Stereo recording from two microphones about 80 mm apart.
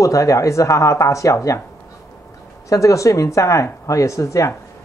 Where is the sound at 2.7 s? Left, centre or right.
Left.